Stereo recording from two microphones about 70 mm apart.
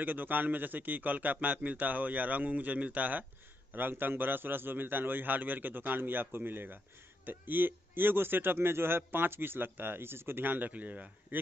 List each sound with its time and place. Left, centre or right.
0.0 s a man's voice: right